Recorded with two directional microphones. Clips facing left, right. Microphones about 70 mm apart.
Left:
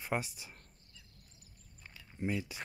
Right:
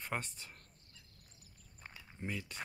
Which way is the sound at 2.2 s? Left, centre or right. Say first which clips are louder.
Left 6 dB; centre.